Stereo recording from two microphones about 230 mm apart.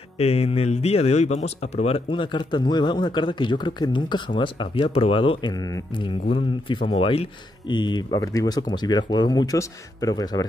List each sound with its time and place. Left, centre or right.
0.2 s speech: left